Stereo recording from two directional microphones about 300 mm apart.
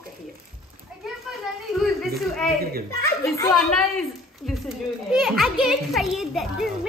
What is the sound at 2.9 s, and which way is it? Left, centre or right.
A child's voice, centre.